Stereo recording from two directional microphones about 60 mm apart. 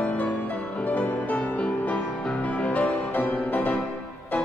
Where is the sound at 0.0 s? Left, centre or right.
Left.